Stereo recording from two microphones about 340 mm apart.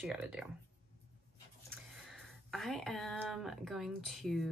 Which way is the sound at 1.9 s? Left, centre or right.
Centre.